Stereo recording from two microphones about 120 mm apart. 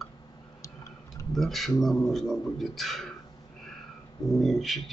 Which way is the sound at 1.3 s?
Centre (ahead or behind).